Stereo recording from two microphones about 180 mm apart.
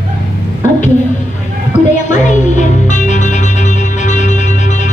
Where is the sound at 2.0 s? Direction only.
40° left (ahead or behind).